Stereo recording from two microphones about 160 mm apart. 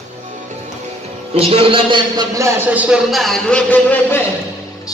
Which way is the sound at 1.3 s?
35° right (ahead or behind).